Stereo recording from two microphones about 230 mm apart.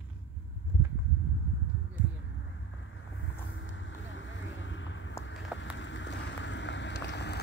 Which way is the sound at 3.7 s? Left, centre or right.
Left.